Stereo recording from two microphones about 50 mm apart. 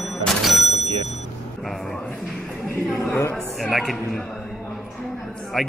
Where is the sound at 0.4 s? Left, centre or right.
Centre.